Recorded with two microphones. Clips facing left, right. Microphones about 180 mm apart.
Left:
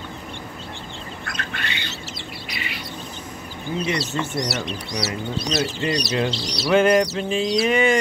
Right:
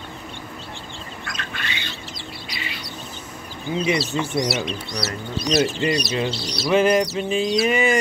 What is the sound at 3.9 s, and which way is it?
Bird, 10° right (ahead or behind).